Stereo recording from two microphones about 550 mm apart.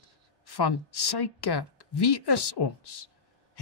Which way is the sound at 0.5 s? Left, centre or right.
Left.